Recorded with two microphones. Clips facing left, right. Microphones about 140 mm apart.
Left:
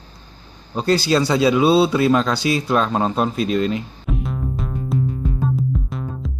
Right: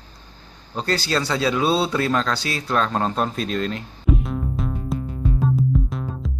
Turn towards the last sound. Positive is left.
turn(degrees=0)  # may be behind; listen again after turning